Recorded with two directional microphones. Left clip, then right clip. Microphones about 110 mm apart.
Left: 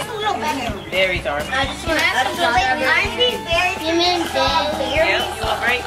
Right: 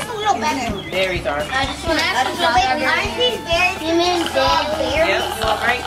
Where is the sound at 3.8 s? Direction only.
5° left (ahead or behind).